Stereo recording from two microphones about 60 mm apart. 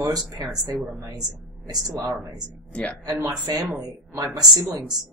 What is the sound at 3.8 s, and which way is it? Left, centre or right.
Speech, right.